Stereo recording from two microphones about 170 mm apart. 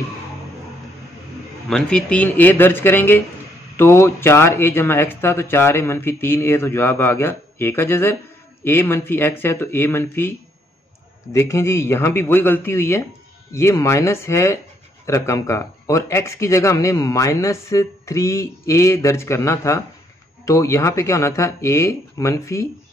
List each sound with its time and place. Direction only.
1.7 s a man's voice: 5° left (ahead or behind)
11.3 s a man's voice: 15° left (ahead or behind)